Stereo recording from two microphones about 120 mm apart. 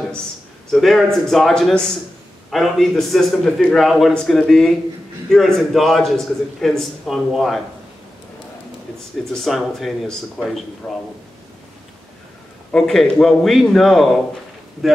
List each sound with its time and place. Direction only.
0.7 s a man's voice: centre (ahead or behind)
9.3 s a man's voice: centre (ahead or behind)
10.8 s a man's voice: 15° left (ahead or behind)
12.7 s a man's voice: 5° left (ahead or behind)